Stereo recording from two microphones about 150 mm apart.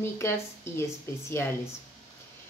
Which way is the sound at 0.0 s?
15° left (ahead or behind).